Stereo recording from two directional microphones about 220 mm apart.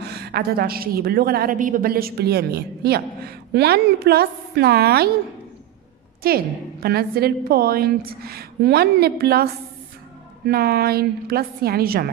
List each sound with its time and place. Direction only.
0.0 s a woman's voice: 50° right (ahead or behind)
6.2 s a woman's voice: 45° right (ahead or behind)